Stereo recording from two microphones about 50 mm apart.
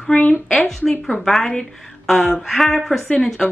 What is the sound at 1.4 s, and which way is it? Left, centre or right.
A woman's voice, centre.